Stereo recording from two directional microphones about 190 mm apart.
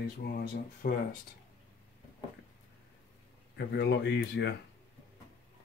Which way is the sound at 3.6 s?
60° left (ahead or behind).